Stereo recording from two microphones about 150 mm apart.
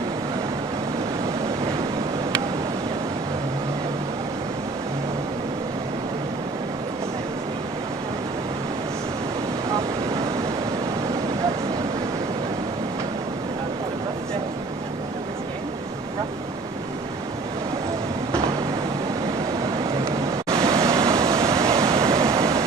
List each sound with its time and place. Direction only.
20.1 s waves: 20° right (ahead or behind)